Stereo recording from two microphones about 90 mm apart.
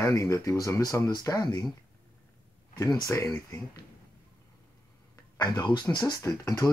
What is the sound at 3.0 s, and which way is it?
Speech, 35° left (ahead or behind).